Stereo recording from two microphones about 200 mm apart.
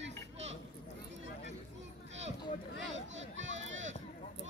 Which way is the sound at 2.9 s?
70° right (ahead or behind).